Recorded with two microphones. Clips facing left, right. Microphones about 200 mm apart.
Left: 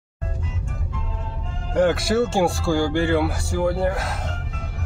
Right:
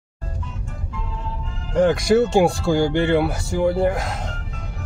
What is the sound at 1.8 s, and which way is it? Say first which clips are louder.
Speech: right 3 dB; 15° right (ahead or behind).